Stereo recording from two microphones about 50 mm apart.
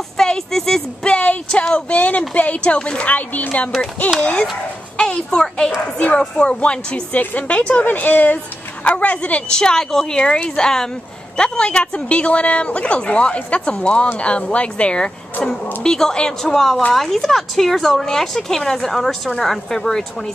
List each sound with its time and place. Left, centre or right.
0.2 s a woman's voice: centre
1.1 s a woman's voice: left
3.1 s speech: left
4.9 s a woman's voice: centre
7.1 s a woman's voice: left
7.8 s a woman's voice: left
9.5 s a woman's voice: centre